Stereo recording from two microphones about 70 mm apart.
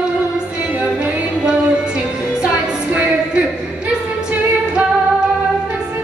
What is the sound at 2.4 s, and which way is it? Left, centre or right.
Music, centre.